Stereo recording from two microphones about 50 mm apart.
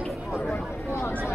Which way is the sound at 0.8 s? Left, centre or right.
Left.